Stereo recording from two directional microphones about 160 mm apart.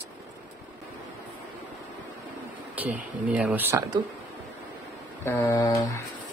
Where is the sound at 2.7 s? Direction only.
10° right (ahead or behind).